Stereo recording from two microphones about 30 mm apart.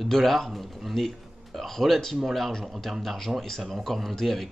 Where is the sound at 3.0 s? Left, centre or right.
Centre.